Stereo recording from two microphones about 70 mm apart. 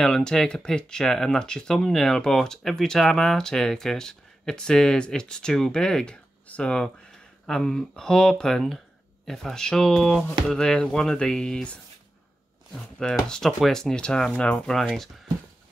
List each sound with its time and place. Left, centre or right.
0.0 s speech: centre